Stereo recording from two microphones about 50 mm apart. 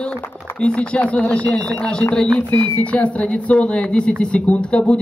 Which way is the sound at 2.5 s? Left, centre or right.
Left.